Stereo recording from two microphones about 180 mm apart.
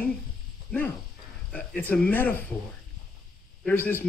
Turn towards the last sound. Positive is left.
turn(degrees=10)  # may be behind; listen again after turning